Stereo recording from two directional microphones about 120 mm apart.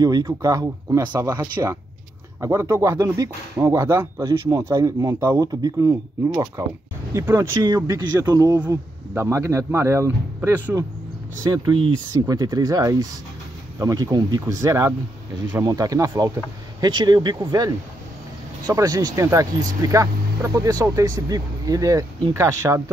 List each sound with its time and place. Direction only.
0.0 s speech: 30° right (ahead or behind)
7.6 s speech: 35° right (ahead or behind)
9.1 s speech: 20° right (ahead or behind)
11.5 s speech: 40° right (ahead or behind)